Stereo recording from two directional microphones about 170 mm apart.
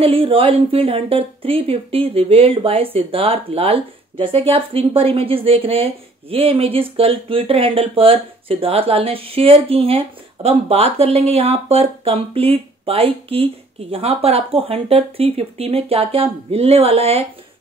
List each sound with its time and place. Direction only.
0.0 s speech: 35° right (ahead or behind)